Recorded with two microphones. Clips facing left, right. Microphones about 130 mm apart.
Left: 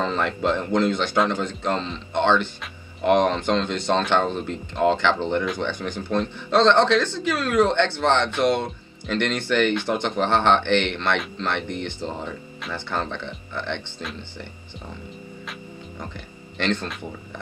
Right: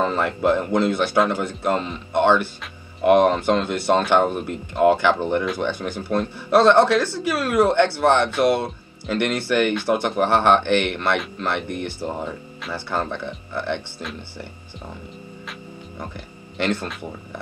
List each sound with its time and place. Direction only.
0.0 s speech: 10° right (ahead or behind)
16.5 s speech: 10° right (ahead or behind)